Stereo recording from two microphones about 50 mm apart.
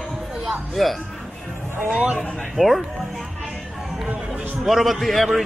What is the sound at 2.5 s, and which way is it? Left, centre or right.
Speech, centre.